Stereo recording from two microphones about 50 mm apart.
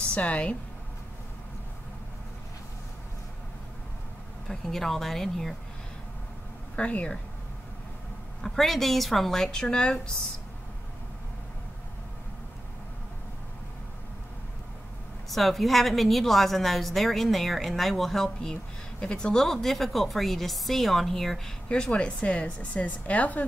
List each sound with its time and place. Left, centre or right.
0.1 s a woman's voice: left
4.5 s speech: centre
6.8 s a woman's voice: left
8.4 s speech: centre
15.2 s a woman's voice: centre
18.5 s a woman's voice: centre
21.9 s a woman's voice: left